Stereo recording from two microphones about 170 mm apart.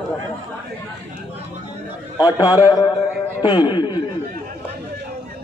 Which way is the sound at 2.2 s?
20° left (ahead or behind).